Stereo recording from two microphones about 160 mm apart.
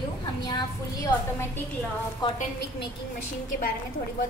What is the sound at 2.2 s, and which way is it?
Speech, 30° left (ahead or behind).